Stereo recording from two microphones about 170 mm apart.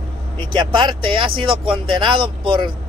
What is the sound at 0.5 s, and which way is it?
Speech, 30° right (ahead or behind).